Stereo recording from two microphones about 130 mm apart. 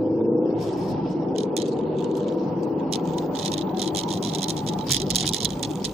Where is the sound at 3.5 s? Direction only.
50° right (ahead or behind).